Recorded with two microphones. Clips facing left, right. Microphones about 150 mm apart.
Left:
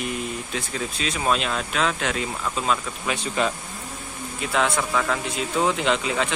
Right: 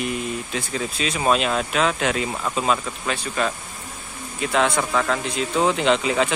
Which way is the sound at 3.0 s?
15° left (ahead or behind).